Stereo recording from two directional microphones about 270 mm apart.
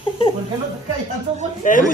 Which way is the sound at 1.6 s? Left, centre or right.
Left.